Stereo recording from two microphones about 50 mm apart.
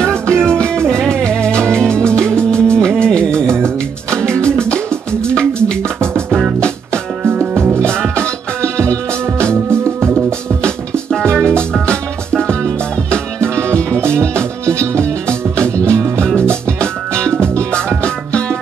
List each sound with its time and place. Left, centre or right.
0.3 s music: right
0.6 s music: centre
6.9 s music: right
7.8 s music: centre
9.7 s music: right
11.1 s music: centre
13.6 s music: right
15.2 s music: left